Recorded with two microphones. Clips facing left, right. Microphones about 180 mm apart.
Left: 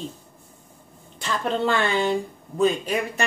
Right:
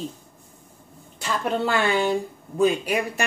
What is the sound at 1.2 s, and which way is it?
Speech, 10° right (ahead or behind).